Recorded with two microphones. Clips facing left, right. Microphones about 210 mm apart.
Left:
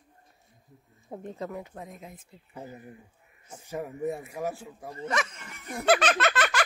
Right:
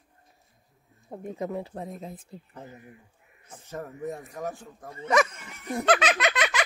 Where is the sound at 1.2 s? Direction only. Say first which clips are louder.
Right 5 dB; 20° right (ahead or behind).